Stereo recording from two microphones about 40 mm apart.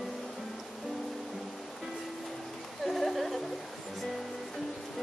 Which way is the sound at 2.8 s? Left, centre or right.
Centre.